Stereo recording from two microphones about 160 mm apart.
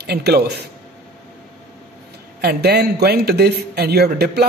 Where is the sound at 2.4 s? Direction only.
85° right.